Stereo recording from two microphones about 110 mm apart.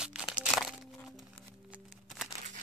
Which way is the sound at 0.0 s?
10° right (ahead or behind).